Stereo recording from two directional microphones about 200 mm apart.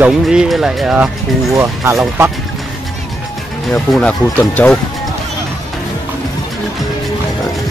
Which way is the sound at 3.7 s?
5° left (ahead or behind).